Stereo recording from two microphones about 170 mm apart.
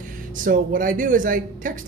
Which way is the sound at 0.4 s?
55° right (ahead or behind).